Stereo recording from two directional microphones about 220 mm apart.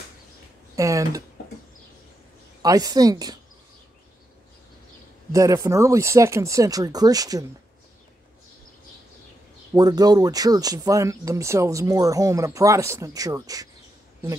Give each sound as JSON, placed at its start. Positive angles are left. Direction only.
{"t": 0.7, "sound": "speech", "side_deg": -15}
{"t": 2.6, "sound": "speech", "side_deg": -15}
{"t": 5.3, "sound": "speech", "side_deg": -15}
{"t": 9.8, "sound": "speech", "side_deg": -15}